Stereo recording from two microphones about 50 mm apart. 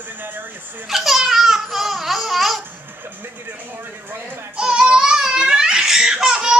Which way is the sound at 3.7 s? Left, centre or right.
Right.